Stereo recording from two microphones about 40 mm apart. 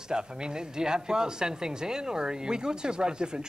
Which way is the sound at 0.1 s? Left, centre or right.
Centre.